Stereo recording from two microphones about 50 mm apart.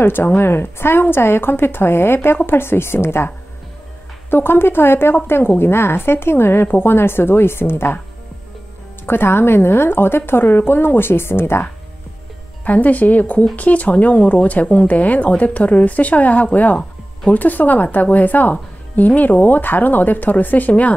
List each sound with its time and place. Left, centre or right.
0.0 s a woman's voice: left
4.3 s a woman's voice: left
9.0 s a woman's voice: left
12.6 s speech: left